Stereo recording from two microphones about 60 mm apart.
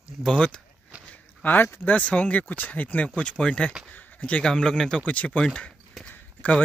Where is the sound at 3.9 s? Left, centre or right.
Left.